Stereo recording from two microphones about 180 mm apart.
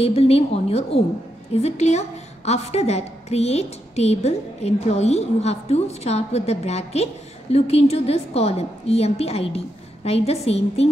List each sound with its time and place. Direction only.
0.0 s a woman's voice: 35° left (ahead or behind)